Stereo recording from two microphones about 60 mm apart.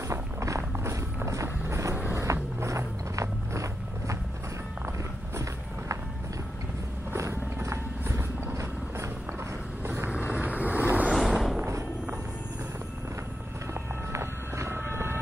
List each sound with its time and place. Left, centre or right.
0.1 s music: right
2.3 s vehicle: right
2.6 s a sound: right
9.8 s vehicle: right
10.1 s vehicle: right
11.1 s vehicle: centre
14.1 s vehicle: right